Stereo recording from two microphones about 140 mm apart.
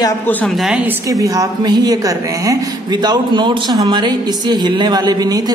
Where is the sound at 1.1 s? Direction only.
25° right (ahead or behind).